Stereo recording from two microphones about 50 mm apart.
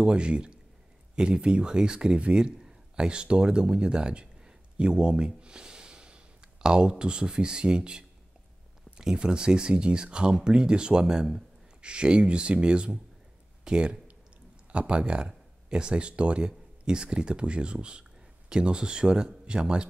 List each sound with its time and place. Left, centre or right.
0.0 s speech: centre